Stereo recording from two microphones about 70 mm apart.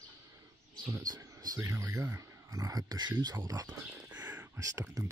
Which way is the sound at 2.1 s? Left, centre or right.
Right.